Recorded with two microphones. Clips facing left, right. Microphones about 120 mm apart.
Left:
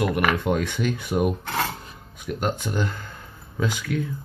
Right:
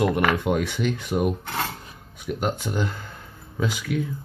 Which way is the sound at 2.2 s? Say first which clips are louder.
Even; 15° right (ahead or behind).